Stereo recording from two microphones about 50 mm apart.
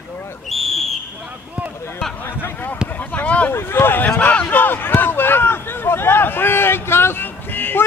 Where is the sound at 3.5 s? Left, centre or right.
Left.